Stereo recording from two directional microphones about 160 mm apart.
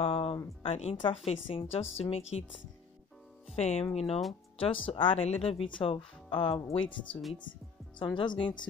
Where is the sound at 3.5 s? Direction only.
40° left (ahead or behind).